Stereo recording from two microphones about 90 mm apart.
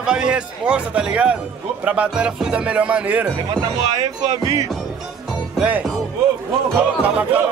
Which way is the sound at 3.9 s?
40° right (ahead or behind).